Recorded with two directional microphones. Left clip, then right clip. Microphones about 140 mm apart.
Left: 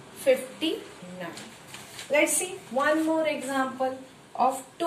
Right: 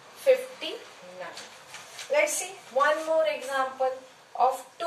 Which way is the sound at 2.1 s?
15° right (ahead or behind).